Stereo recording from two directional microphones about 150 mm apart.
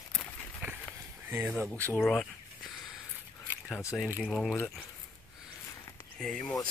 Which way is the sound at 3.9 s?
10° right (ahead or behind).